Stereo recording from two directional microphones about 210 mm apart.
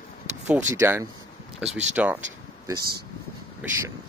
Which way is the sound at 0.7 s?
10° right (ahead or behind).